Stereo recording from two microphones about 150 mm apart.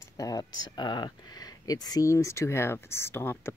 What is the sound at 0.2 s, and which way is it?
Speech, 25° left (ahead or behind).